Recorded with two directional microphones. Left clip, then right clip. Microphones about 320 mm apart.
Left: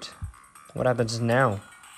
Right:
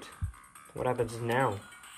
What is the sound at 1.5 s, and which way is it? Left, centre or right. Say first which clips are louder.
Music: left 2 dB; centre.